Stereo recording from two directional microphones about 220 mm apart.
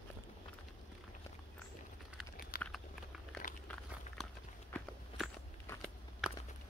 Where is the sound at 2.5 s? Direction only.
40° left (ahead or behind).